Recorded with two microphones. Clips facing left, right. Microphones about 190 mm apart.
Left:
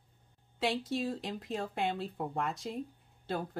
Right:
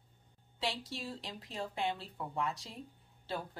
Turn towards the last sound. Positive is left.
turn(degrees=50)  # may be behind; listen again after turning